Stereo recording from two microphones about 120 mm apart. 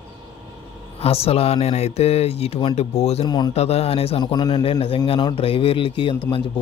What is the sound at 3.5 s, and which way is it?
Speech, 60° left (ahead or behind).